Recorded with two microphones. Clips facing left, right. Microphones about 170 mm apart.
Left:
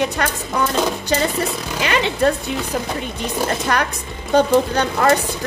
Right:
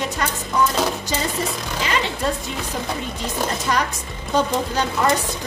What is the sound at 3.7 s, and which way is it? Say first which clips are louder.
A woman's voice: left 2 dB; 65° left (ahead or behind).